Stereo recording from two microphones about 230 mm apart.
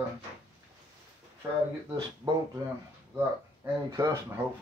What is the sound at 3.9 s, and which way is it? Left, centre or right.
Speech, centre.